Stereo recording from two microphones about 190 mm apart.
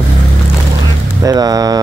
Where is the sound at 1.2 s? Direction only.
20° right (ahead or behind).